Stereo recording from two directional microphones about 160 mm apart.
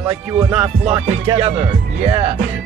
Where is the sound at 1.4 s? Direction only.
40° right (ahead or behind).